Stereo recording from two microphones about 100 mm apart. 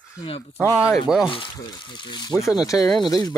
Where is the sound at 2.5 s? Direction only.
35° left (ahead or behind).